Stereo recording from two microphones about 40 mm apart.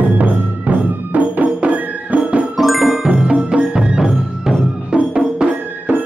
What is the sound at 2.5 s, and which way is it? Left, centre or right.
Music, centre.